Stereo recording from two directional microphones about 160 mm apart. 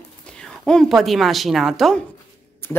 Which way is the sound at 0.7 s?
Centre (ahead or behind).